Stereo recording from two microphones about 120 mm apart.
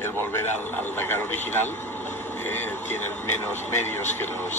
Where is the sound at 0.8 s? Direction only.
20° left (ahead or behind).